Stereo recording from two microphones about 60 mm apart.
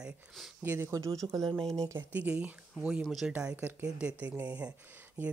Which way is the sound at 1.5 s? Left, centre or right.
Centre.